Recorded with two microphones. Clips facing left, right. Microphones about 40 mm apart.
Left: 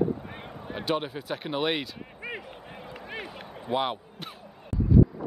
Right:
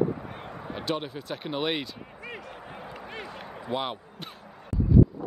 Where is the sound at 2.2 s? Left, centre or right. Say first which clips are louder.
Left 3 dB; centre.